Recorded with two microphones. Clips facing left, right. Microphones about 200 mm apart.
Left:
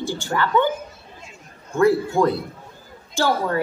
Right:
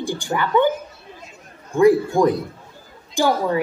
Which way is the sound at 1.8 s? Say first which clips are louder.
Right 3 dB; 15° right (ahead or behind).